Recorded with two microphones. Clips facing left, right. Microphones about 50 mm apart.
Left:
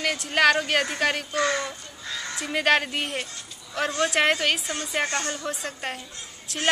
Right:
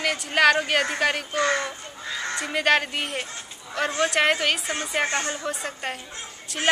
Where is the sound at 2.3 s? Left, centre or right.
Centre.